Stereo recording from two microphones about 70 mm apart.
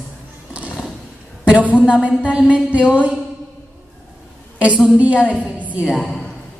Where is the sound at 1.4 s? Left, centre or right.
Centre.